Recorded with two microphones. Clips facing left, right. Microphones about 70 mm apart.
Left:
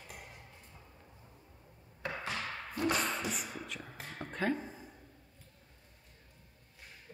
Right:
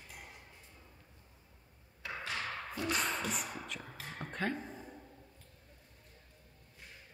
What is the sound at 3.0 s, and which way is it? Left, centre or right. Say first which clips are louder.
Music: even; centre.